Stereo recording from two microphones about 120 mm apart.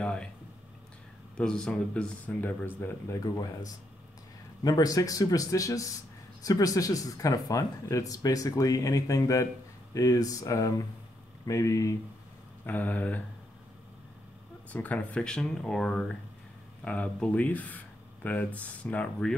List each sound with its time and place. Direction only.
0.0 s a sound: 10° left (ahead or behind)
1.3 s speech: 5° left (ahead or behind)
4.6 s speech: 30° left (ahead or behind)
12.6 s speech: 15° left (ahead or behind)
14.7 s speech: 10° left (ahead or behind)